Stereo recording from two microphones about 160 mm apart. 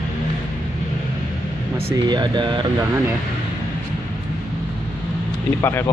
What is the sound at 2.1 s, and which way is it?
Speech, 30° right (ahead or behind).